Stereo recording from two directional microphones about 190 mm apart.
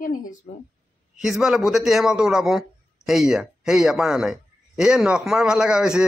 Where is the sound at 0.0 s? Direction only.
45° left (ahead or behind).